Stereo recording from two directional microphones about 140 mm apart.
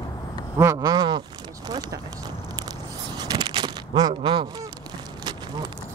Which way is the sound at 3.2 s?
30° right (ahead or behind).